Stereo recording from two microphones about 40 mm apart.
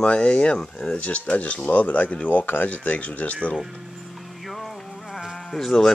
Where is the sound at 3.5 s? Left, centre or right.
Centre.